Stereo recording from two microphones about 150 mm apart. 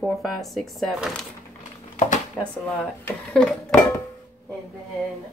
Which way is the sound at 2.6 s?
5° left (ahead or behind).